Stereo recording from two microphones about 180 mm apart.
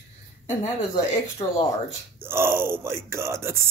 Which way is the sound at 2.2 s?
15° right (ahead or behind).